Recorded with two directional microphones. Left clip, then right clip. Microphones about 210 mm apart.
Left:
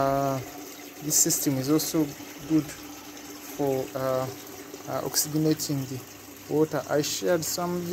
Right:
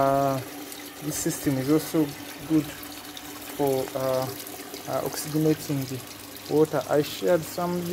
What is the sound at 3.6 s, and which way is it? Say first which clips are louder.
Speech: right 2 dB; 10° left (ahead or behind).